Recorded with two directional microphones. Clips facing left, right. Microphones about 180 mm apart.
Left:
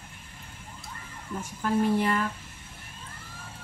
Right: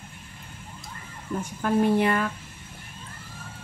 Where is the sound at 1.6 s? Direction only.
60° right (ahead or behind).